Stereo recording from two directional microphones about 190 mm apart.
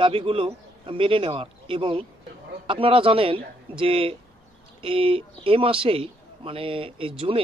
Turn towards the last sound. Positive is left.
turn(degrees=-30)  # may be behind; listen again after turning